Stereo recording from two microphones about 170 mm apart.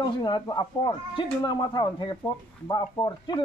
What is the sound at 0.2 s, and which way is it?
Speech, 25° left (ahead or behind).